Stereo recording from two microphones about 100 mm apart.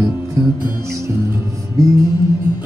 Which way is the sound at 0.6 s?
25° right (ahead or behind).